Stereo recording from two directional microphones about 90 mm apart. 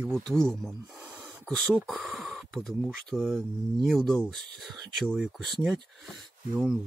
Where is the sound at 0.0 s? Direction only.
15° right (ahead or behind).